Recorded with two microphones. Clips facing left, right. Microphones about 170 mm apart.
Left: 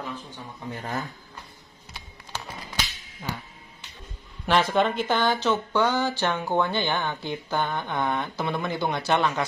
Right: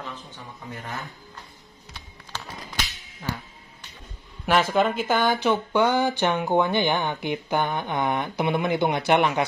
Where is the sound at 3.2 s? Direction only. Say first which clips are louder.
Right 2 dB; 10° left (ahead or behind).